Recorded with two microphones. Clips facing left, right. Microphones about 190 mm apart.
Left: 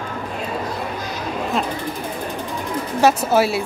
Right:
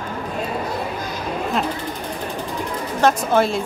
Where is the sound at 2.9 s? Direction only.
5° left (ahead or behind).